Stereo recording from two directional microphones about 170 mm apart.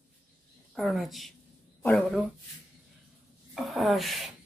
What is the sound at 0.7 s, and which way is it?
Speech, centre (ahead or behind).